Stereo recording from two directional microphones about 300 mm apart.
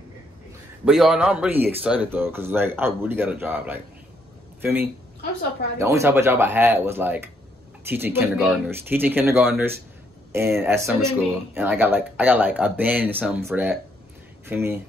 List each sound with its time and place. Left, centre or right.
0.8 s speech: centre